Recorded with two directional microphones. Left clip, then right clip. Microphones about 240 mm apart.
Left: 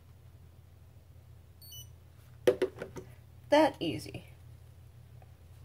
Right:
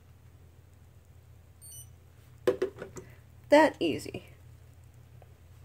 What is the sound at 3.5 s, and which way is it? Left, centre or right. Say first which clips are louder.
Speech: right 4 dB; right.